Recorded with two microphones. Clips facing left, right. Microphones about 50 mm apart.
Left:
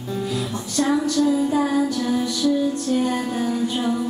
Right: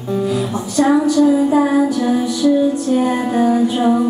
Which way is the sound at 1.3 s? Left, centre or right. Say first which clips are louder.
Right 6 dB; centre.